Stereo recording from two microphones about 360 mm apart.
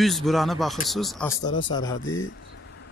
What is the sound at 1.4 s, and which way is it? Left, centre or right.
Speech, centre.